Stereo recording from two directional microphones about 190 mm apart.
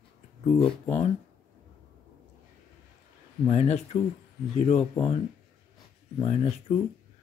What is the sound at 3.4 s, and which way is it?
Speech, 35° left (ahead or behind).